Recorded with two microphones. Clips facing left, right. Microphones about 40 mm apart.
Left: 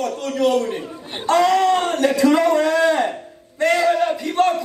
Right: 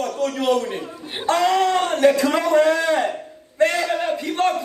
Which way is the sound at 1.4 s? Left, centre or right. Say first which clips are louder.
Left 2 dB; right.